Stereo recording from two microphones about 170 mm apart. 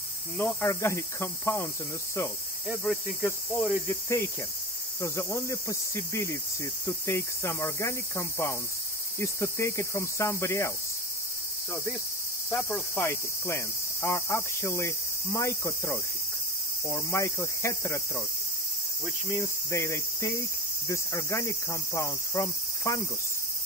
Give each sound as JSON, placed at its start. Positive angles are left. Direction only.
{"t": 0.4, "sound": "speech", "side_deg": 15}
{"t": 2.8, "sound": "speech", "side_deg": 10}
{"t": 12.4, "sound": "speech", "side_deg": 10}
{"t": 19.3, "sound": "speech", "side_deg": 15}